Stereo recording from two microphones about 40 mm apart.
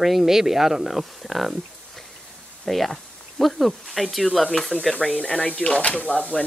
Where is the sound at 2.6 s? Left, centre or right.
Centre.